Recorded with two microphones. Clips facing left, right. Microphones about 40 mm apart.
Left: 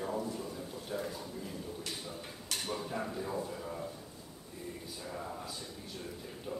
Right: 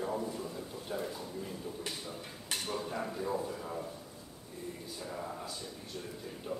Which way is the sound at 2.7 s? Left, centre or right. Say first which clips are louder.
Even; centre.